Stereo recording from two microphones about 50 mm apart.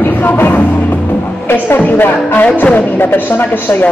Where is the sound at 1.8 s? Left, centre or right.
Left.